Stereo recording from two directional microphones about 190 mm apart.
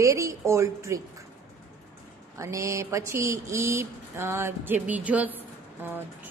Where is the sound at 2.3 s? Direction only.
15° right (ahead or behind).